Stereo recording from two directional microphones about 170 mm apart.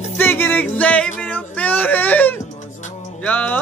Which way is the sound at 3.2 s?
10° left (ahead or behind).